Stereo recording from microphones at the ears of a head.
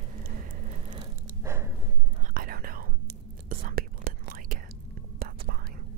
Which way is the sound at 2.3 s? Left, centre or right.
Right.